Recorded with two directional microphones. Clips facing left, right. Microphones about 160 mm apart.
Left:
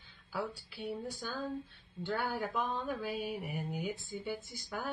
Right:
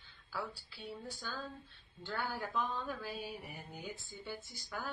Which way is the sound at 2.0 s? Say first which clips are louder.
Left 5 dB; 15° left (ahead or behind).